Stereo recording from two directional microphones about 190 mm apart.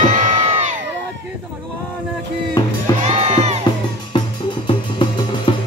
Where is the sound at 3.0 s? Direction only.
35° right (ahead or behind).